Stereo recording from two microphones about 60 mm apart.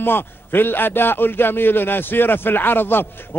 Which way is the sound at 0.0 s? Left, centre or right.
Left.